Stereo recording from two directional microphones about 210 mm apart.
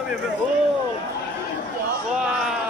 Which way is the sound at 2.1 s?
5° right (ahead or behind).